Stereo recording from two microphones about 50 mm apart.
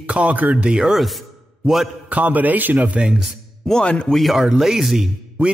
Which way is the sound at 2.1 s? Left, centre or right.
Right.